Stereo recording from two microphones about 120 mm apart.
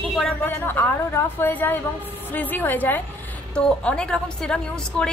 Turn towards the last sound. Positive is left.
turn(degrees=10)  # may be behind; listen again after turning